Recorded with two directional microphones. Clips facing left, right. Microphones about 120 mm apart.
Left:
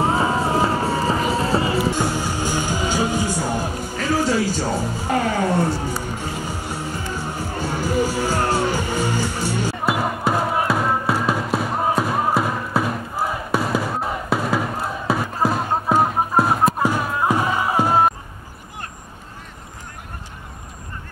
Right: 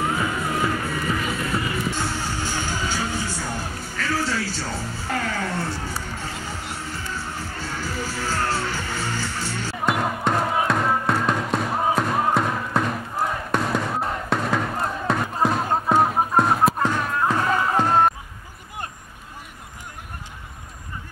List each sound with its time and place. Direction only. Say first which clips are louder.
0.0 s music: left 6 dB; 30° left (ahead or behind)
2.0 s music: left 5 dB; 15° left (ahead or behind)